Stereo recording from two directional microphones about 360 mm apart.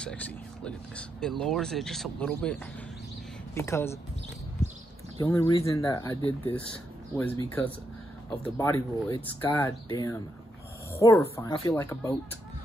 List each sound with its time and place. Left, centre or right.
0.0 s speech: centre
5.2 s speech: centre
8.5 s speech: centre